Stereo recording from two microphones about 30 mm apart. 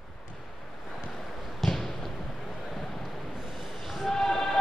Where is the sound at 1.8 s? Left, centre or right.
Centre.